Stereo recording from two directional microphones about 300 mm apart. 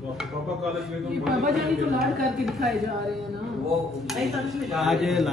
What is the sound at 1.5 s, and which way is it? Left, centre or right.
A man's voice, centre.